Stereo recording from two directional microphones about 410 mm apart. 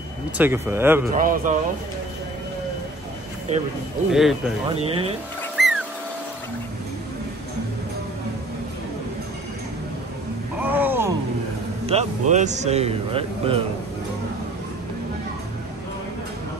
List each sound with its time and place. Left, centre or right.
0.4 s speech: centre
1.1 s speech: centre
3.5 s speech: centre
4.1 s speech: centre
4.6 s speech: centre
5.6 s a sound: centre
10.6 s a sound: centre
11.8 s speech: centre